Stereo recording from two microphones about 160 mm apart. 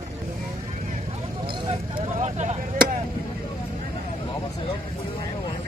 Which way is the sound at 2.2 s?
45° right (ahead or behind).